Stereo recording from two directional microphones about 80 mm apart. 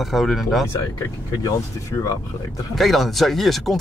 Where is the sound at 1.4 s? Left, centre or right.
Left.